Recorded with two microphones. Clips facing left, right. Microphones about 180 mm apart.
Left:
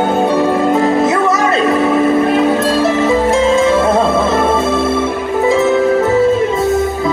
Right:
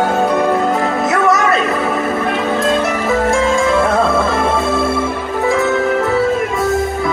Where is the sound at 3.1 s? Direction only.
20° left (ahead or behind).